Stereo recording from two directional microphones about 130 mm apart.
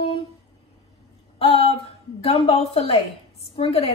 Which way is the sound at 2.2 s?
50° left (ahead or behind).